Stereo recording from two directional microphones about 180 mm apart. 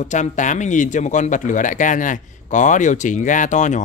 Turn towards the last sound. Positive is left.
turn(degrees=40)  # may be behind; listen again after turning